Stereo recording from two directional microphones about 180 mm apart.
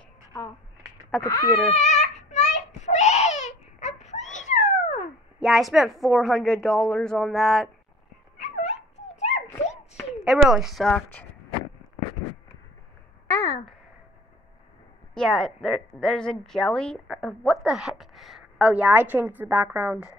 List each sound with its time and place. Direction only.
1.2 s speech: 20° left (ahead or behind)
1.8 s a sound: 40° left (ahead or behind)
5.4 s a woman's voice: centre (ahead or behind)
8.4 s cat: 40° left (ahead or behind)
10.2 s a woman's voice: centre (ahead or behind)
13.3 s a sound: 20° left (ahead or behind)
15.1 s a woman's voice: centre (ahead or behind)